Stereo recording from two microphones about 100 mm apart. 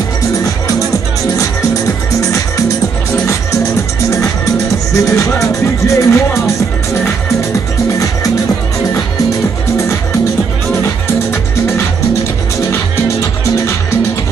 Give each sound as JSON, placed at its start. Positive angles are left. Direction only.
{"t": 2.1, "sound": "music", "side_deg": 35}
{"t": 4.9, "sound": "music", "side_deg": 35}